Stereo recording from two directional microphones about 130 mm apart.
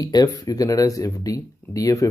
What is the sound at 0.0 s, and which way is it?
Speech, 30° left (ahead or behind).